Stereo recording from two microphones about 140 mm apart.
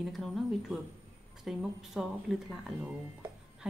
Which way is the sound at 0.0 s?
Centre (ahead or behind).